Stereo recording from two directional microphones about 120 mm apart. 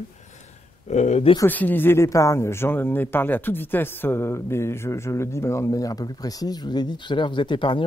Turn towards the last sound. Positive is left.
turn(degrees=45)  # may be behind; listen again after turning